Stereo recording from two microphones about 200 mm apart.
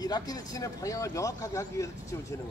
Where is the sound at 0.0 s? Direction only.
20° left (ahead or behind).